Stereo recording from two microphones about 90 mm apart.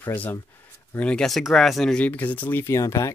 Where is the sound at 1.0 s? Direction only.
10° left (ahead or behind).